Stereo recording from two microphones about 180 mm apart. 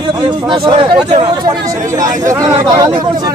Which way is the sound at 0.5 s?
30° right (ahead or behind).